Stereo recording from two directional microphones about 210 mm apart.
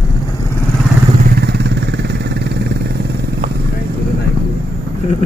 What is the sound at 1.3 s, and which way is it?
Vehicle, 50° right (ahead or behind).